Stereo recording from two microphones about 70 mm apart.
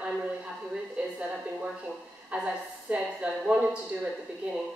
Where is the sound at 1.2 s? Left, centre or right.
Centre.